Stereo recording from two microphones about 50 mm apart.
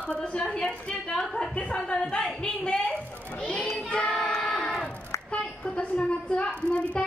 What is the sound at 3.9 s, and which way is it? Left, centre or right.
Child singing, centre.